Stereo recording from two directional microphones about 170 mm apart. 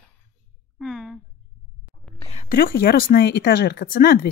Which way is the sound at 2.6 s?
65° left (ahead or behind).